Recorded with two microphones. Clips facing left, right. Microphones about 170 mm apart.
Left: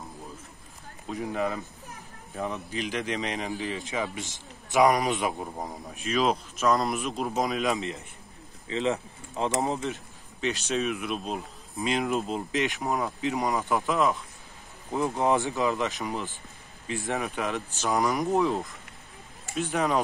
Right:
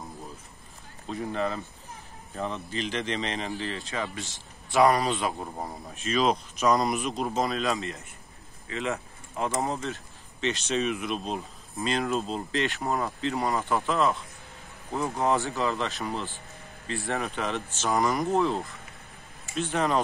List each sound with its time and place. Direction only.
1.0 s speech: 10° left (ahead or behind)
5.9 s speech: 5° left (ahead or behind)
10.4 s speech: centre (ahead or behind)
11.8 s a man's voice: 15° left (ahead or behind)
17.2 s speech: centre (ahead or behind)